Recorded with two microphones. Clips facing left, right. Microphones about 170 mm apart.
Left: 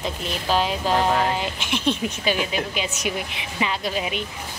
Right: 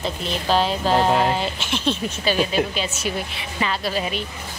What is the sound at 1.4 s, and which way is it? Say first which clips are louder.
A woman's voice: right 1 dB; 15° left (ahead or behind).